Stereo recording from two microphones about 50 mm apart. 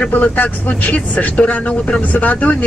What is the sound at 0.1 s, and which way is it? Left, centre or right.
Speech, left.